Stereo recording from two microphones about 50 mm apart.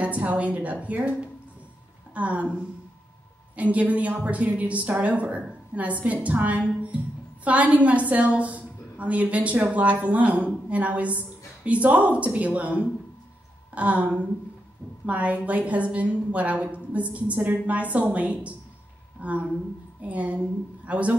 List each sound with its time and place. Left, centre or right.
0.0 s a woman's voice: right
2.1 s a woman's voice: right